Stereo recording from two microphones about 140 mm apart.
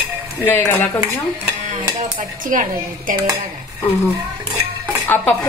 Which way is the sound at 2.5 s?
70° right (ahead or behind).